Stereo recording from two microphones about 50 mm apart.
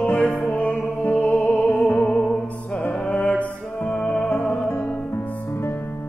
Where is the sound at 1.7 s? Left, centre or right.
Left.